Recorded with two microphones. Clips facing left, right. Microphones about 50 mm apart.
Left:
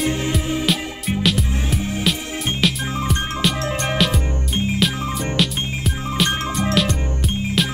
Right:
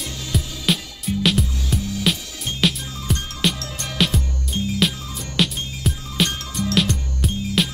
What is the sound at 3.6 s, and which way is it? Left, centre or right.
Music, left.